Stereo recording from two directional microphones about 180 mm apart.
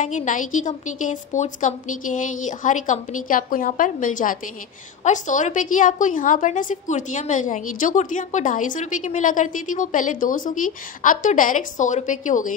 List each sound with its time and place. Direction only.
0.0 s a woman's voice: 45° left (ahead or behind)